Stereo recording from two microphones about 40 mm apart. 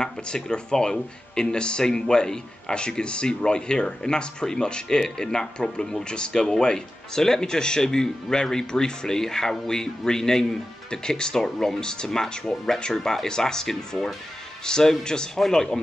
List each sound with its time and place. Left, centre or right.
0.0 s speech: left